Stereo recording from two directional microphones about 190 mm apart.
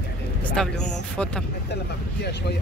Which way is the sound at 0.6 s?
5° left (ahead or behind).